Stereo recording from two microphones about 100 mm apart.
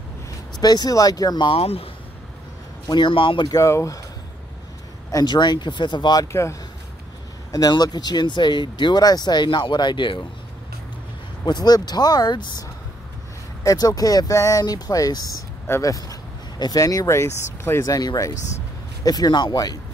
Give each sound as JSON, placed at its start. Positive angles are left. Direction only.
{"t": 0.6, "sound": "speech", "side_deg": 45}
{"t": 1.5, "sound": "speech", "side_deg": 80}
{"t": 2.9, "sound": "speech", "side_deg": 55}
{"t": 3.4, "sound": "speech", "side_deg": 35}
{"t": 5.1, "sound": "speech", "side_deg": 45}
{"t": 6.2, "sound": "speech", "side_deg": 30}
{"t": 7.5, "sound": "speech", "side_deg": 40}
{"t": 11.4, "sound": "speech", "side_deg": 45}
{"t": 13.7, "sound": "speech", "side_deg": 40}